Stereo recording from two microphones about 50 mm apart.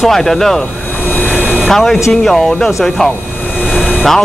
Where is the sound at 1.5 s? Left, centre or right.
Centre.